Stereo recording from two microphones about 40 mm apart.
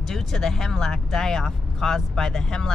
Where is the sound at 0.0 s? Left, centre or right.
Centre.